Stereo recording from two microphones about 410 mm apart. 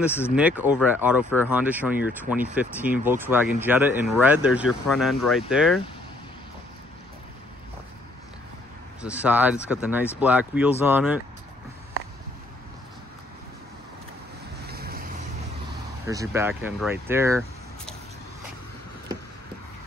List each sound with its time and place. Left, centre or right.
0.0 s speech: centre
9.0 s speech: centre
14.7 s boat: right
16.1 s speech: centre